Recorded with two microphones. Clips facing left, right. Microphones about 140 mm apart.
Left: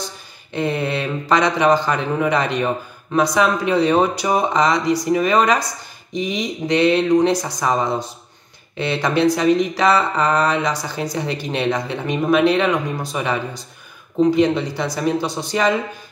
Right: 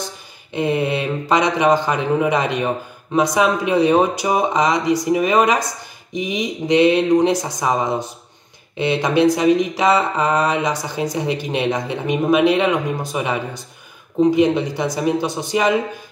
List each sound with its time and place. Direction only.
0.5 s a man's voice: 15° right (ahead or behind)